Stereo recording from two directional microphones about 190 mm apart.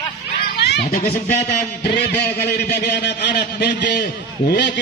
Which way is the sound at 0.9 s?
50° left (ahead or behind).